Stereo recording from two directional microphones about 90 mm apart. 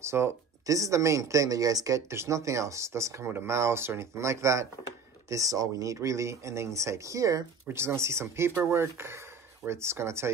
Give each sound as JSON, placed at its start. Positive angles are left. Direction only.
{"t": 0.0, "sound": "speech", "side_deg": -30}